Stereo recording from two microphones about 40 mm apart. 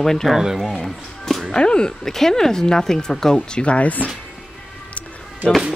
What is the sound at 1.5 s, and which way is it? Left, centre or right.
Speech, left.